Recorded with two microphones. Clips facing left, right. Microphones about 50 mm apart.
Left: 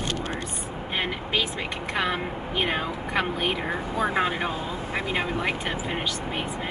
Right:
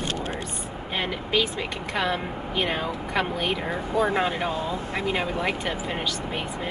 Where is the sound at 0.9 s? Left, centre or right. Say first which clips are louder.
Right 2 dB; centre.